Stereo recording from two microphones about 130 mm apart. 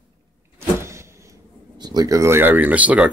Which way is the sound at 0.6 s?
20° right (ahead or behind).